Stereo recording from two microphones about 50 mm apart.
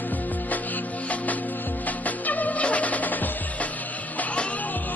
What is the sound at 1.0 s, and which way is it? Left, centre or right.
Music, left.